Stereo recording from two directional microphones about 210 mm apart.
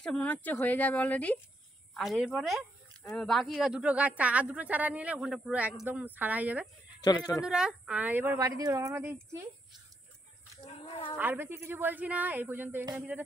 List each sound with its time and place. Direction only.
0.0 s speech: 5° left (ahead or behind)
7.0 s speech: 20° left (ahead or behind)
7.4 s speech: 5° right (ahead or behind)
10.6 s cat: 30° left (ahead or behind)
11.1 s speech: 10° right (ahead or behind)